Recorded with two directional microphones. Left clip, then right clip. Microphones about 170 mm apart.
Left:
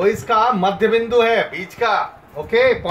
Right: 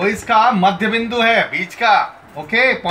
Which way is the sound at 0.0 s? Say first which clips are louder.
Right 2 dB; 20° left (ahead or behind).